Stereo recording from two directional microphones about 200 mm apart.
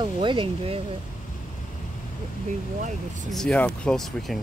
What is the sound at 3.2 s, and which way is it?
Speech, 5° left (ahead or behind).